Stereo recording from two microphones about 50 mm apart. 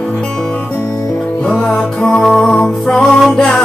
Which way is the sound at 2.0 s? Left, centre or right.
Centre.